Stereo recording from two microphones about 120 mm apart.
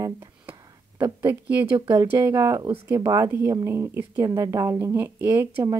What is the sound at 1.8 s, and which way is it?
A woman's voice, 30° right (ahead or behind).